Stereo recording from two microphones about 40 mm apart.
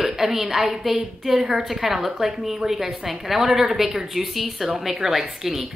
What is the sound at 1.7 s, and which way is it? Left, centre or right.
A woman's voice, centre.